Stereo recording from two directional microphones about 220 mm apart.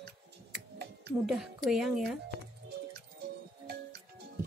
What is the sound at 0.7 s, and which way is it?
Music, 50° right (ahead or behind).